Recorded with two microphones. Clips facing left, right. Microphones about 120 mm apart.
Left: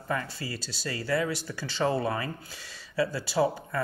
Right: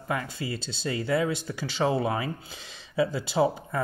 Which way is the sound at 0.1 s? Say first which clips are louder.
Right 2 dB; 15° right (ahead or behind).